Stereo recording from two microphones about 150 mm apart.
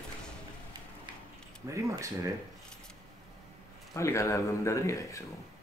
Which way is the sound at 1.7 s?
20° right (ahead or behind).